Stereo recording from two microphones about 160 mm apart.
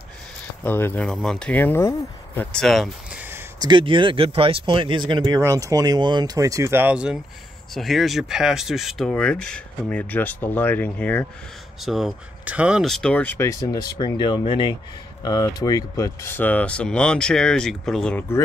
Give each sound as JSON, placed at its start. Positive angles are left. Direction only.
{"t": 0.7, "sound": "speech", "side_deg": 10}
{"t": 2.5, "sound": "a sound", "side_deg": 0}
{"t": 3.6, "sound": "speech", "side_deg": -30}
{"t": 11.8, "sound": "speech", "side_deg": 0}